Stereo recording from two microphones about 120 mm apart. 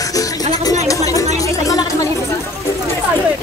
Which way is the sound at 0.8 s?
30° left (ahead or behind).